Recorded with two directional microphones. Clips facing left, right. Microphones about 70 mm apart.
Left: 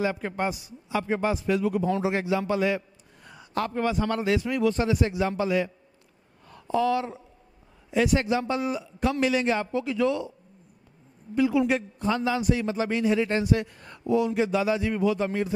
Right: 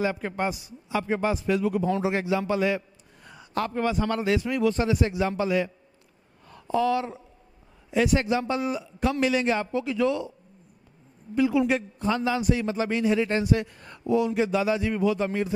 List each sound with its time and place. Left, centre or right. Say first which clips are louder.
0.0 s a man's voice: even; right
6.7 s a man's voice: even; right
11.3 s a man's voice: even; right